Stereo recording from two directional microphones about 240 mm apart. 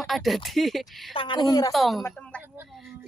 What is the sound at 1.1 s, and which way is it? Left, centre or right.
Speech, left.